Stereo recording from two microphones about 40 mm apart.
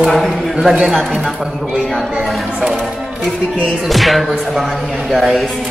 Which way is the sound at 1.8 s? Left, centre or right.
Centre.